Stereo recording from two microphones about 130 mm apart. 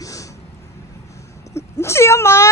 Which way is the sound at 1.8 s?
20° left (ahead or behind).